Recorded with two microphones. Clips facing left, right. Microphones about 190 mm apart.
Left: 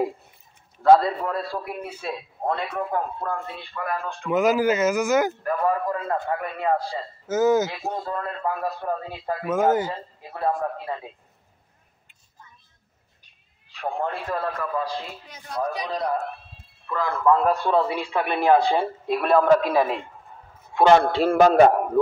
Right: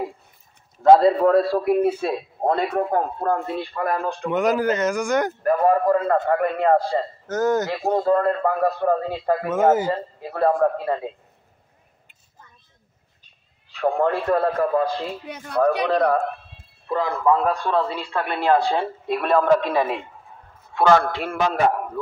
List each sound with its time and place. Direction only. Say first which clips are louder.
0.8 s a man's voice: right 3 dB; 25° right (ahead or behind)
1.2 s a man's voice: right 11 dB; 70° right (ahead or behind); by 4.3 s 40° right (ahead or behind)
4.3 s a man's voice: left 1 dB; 5° left (ahead or behind)
5.4 s a man's voice: right 6 dB; 50° right (ahead or behind)
7.2 s a man's voice: left 3 dB; 5° left (ahead or behind)
7.7 s a man's voice: right 10 dB; 60° right (ahead or behind)
9.5 s a man's voice: right 1 dB; centre (ahead or behind)
10.2 s a man's voice: right 7 dB; 65° right (ahead or behind)
13.7 s a man's voice: right 7 dB; 70° right (ahead or behind)
16.8 s a man's voice: right 3 dB; 30° right (ahead or behind)
17.1 s a man's voice: left 1 dB; 5° right (ahead or behind)
17.6 s a man's voice: left 1 dB; 10° left (ahead or behind)
20.7 s a man's voice: left 1 dB; 20° left (ahead or behind)